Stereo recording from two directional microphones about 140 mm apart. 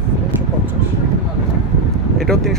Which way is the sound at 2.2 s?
Centre (ahead or behind).